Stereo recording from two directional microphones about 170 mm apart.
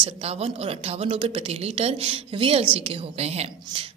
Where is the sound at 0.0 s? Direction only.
35° right (ahead or behind).